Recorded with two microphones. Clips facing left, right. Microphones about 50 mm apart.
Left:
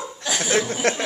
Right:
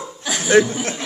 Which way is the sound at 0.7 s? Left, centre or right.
Left.